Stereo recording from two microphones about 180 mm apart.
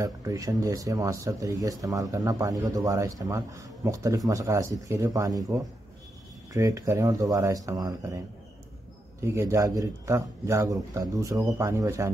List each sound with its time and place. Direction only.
0.0 s speech: 20° right (ahead or behind)
9.2 s speech: 15° right (ahead or behind)